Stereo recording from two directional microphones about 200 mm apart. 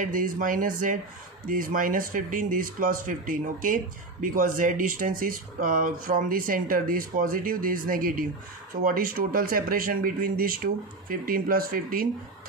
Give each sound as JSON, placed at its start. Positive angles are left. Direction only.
{"t": 0.0, "sound": "speech", "side_deg": -40}